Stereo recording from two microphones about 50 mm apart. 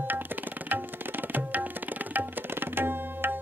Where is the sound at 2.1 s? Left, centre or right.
Right.